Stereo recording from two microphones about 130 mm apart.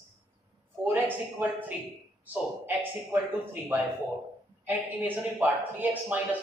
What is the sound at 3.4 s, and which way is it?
Speech, 15° right (ahead or behind).